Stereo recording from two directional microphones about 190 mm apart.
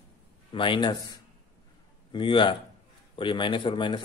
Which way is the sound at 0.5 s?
25° left (ahead or behind).